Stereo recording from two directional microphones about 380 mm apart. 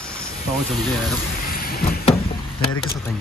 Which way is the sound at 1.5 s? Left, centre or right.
Left.